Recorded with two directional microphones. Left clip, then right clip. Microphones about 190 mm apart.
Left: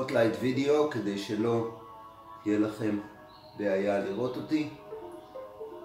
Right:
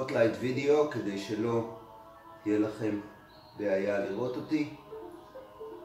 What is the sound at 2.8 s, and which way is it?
Speech, 10° left (ahead or behind).